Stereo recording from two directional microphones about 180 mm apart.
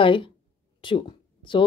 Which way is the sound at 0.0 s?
30° left (ahead or behind).